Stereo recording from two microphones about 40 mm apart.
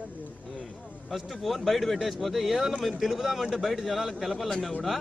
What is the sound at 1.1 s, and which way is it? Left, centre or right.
A man's voice, centre.